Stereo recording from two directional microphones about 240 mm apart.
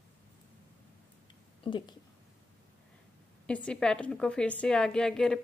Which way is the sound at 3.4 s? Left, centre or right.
Centre.